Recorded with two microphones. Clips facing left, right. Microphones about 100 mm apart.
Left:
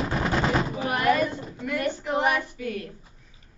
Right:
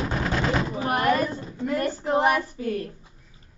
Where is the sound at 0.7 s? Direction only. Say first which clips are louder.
Right 1 dB; 35° right (ahead or behind).